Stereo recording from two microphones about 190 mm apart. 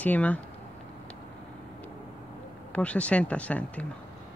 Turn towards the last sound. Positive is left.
turn(degrees=5)  # may be behind; listen again after turning